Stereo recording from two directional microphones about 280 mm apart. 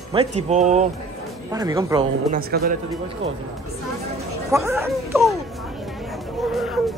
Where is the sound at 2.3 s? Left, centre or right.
Right.